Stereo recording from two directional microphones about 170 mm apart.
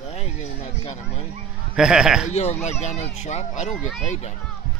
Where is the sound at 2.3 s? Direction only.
40° left (ahead or behind).